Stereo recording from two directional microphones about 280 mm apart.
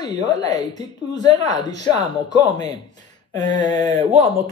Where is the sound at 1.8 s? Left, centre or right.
Right.